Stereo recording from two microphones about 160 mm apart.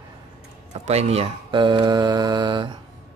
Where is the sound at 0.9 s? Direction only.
40° right (ahead or behind).